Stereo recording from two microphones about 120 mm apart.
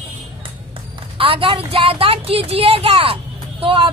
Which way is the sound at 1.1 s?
50° right (ahead or behind).